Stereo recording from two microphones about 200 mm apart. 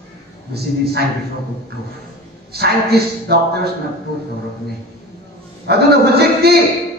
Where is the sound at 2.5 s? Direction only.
55° right (ahead or behind).